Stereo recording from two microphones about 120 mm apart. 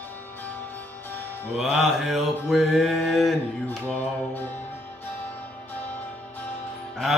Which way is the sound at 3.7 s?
15° left (ahead or behind).